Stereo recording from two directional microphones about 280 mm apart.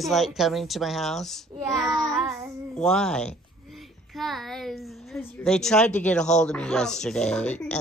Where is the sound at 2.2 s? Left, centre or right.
Centre.